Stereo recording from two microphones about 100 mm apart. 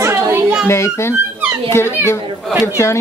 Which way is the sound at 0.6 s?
25° left (ahead or behind).